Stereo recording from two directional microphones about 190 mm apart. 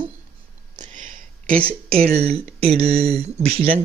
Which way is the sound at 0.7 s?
40° right (ahead or behind).